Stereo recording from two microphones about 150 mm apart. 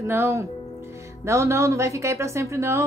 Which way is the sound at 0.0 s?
20° right (ahead or behind).